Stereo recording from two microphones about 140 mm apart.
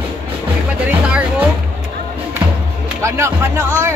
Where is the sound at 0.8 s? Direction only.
10° right (ahead or behind).